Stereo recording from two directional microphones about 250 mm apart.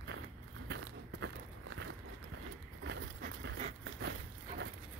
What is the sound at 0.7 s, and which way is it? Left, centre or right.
Walk, right.